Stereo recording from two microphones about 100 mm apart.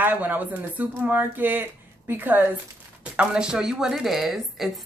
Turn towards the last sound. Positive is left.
turn(degrees=0)  # may be behind; listen again after turning